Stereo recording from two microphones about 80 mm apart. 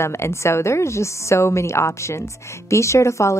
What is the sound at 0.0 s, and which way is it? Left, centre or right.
A woman's voice, left.